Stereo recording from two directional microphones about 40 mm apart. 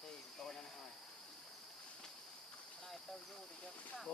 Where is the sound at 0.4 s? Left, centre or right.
Centre.